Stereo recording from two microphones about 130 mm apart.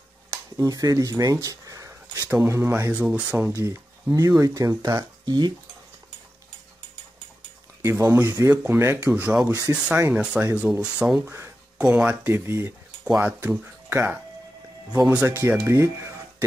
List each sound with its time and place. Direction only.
0.3 s speech: 25° right (ahead or behind)
8.1 s speech: 20° right (ahead or behind)